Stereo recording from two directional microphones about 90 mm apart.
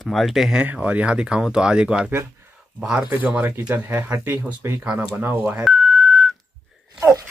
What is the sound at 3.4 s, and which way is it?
Speech, 25° right (ahead or behind).